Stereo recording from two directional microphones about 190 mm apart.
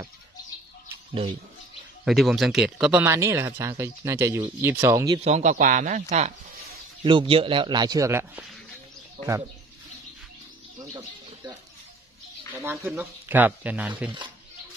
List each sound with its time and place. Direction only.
2.0 s speech: centre (ahead or behind); by 5.2 s 20° right (ahead or behind)
5.2 s a man's voice: 35° right (ahead or behind); by 8.5 s 10° right (ahead or behind)
10.8 s bird: 20° right (ahead or behind)
12.6 s speech: 10° right (ahead or behind)